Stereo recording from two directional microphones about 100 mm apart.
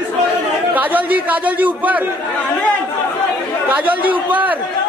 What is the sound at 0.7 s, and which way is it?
A man's voice, 15° right (ahead or behind).